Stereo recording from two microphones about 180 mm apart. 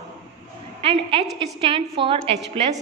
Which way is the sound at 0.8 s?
30° right (ahead or behind).